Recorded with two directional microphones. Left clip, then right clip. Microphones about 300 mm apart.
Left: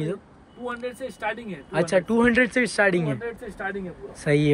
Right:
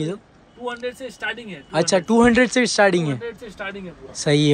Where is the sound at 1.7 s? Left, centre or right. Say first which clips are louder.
Right 4 dB; centre.